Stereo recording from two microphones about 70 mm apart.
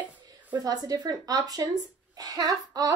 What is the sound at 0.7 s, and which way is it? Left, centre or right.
A woman's voice, right.